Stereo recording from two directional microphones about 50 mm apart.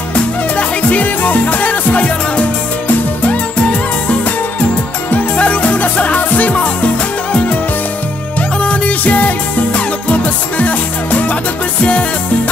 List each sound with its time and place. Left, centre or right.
0.1 s music: left
5.1 s music: left
8.4 s music: left